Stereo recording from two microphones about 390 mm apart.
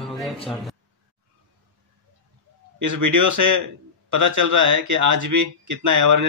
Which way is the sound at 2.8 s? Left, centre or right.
Right.